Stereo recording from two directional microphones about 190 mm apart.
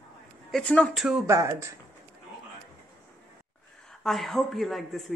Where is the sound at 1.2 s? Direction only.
15° right (ahead or behind).